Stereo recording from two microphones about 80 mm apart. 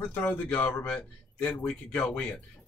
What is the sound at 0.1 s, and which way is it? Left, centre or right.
Speech, centre.